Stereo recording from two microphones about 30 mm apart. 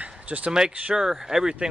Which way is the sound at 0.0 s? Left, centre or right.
Right.